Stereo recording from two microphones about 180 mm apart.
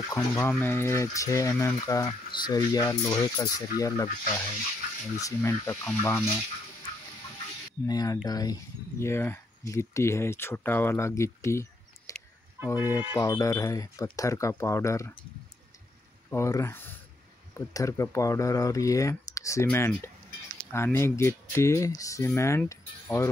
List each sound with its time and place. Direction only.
0.1 s speech: 15° left (ahead or behind)
7.8 s speech: 20° left (ahead or behind)
12.1 s fowl: 15° left (ahead or behind)
12.6 s speech: 20° left (ahead or behind)
16.3 s speech: 15° left (ahead or behind)